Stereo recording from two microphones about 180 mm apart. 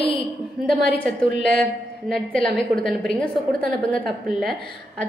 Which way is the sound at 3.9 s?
Centre (ahead or behind).